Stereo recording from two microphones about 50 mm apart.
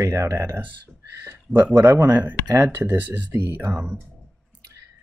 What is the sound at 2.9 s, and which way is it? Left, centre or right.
Speech, right.